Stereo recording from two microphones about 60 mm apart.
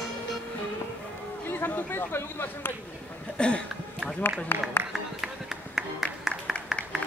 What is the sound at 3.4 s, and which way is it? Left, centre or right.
Speech, centre.